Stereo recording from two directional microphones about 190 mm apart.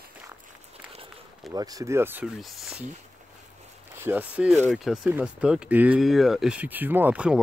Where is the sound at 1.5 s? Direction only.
20° right (ahead or behind).